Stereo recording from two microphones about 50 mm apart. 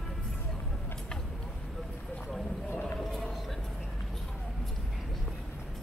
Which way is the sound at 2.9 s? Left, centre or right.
Centre.